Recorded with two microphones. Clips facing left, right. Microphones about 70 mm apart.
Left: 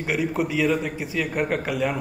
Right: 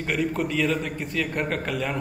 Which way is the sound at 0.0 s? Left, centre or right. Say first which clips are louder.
Left 1 dB; centre.